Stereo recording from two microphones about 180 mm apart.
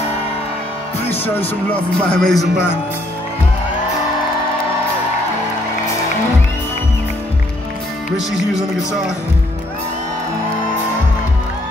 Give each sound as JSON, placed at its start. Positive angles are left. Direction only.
{"t": 1.2, "sound": "speech", "side_deg": 10}
{"t": 8.3, "sound": "speech", "side_deg": 0}